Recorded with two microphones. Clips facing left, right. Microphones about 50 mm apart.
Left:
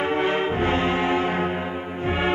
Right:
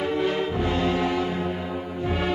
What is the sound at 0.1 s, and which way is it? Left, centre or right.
Music, left.